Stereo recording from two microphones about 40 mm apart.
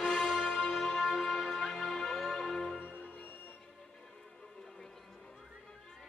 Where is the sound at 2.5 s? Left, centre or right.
Centre.